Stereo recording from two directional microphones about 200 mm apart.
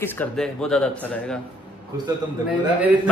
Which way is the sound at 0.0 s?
10° left (ahead or behind).